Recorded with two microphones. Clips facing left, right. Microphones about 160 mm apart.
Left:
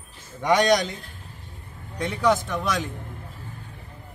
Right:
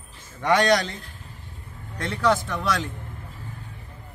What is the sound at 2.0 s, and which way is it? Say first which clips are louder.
Speech: left 1 dB; 15° left (ahead or behind).